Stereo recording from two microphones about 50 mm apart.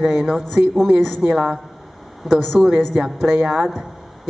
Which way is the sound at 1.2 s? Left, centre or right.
Right.